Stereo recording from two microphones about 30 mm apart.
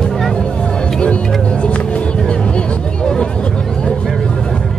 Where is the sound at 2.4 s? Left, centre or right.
Left.